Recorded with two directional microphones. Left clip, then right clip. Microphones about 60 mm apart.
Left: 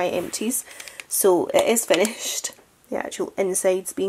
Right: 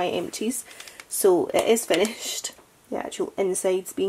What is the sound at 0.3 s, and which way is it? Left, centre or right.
Speech, left.